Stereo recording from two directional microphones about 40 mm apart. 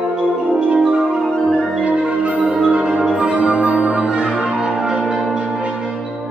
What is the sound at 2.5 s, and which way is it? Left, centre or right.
Music, centre.